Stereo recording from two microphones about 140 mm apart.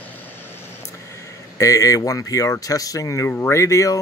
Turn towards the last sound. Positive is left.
turn(degrees=20)  # may be behind; listen again after turning